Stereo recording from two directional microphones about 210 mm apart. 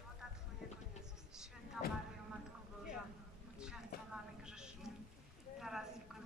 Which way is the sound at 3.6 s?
5° right (ahead or behind).